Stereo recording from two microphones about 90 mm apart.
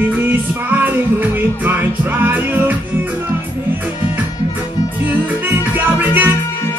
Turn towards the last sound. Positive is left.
turn(degrees=-20)  # may be behind; listen again after turning